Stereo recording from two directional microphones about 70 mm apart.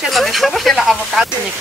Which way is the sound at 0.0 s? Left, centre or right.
Centre.